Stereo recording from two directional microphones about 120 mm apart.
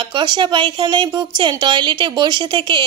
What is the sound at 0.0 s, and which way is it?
Speech, 40° right (ahead or behind).